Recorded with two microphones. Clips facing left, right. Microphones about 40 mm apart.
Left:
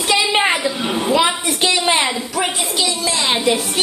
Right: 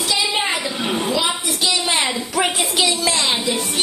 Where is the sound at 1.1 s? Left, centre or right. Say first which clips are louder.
Left 5 dB; left.